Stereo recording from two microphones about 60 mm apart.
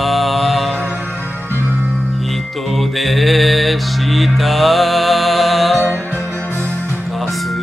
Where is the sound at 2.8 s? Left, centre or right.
Centre.